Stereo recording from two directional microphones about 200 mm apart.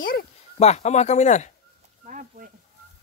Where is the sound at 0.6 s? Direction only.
35° left (ahead or behind).